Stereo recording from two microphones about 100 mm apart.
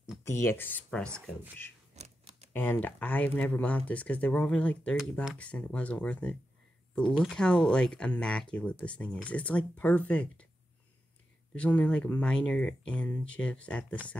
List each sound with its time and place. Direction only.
0.2 s speech: 25° left (ahead or behind)
0.8 s speech: 10° left (ahead or behind)
2.0 s a sound: 90° right
2.5 s speech: 20° left (ahead or behind)
11.5 s speech: 15° left (ahead or behind)